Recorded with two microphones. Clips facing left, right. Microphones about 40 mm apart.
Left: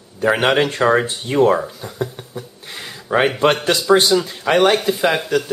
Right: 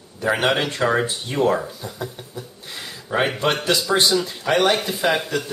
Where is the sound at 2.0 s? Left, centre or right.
Left.